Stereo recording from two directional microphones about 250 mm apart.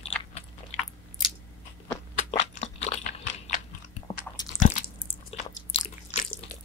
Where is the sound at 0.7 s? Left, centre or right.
Left.